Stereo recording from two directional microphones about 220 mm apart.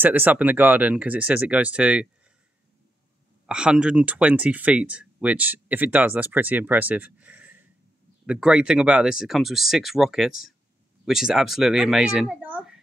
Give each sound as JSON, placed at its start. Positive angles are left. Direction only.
{"t": 0.0, "sound": "speech", "side_deg": -10}
{"t": 3.4, "sound": "speech", "side_deg": -5}